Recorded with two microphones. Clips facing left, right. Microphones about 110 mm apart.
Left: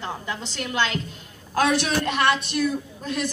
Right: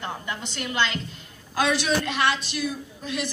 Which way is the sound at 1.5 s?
55° left (ahead or behind).